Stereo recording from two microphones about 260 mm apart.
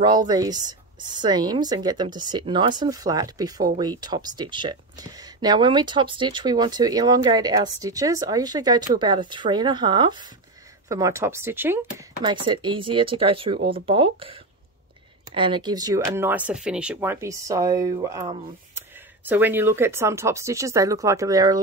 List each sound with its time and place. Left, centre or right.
0.0 s speech: centre